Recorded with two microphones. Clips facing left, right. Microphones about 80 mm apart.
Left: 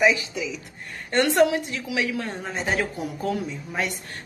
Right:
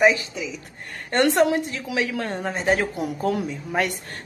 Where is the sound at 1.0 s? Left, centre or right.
Right.